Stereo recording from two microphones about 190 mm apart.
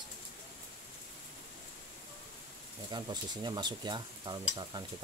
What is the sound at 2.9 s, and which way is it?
Stir, 25° right (ahead or behind).